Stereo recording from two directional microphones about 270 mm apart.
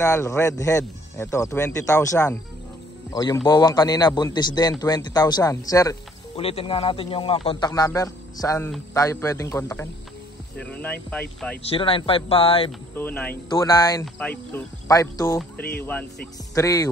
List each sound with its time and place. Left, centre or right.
0.0 s a man's voice: centre
11.7 s speech: centre
12.9 s a man's voice: centre